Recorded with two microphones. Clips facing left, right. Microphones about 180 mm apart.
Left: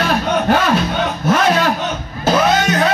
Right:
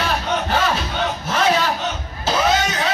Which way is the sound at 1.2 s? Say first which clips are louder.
Left 5 dB; 55° left (ahead or behind).